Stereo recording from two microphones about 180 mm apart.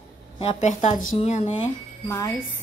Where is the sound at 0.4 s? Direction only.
40° left (ahead or behind).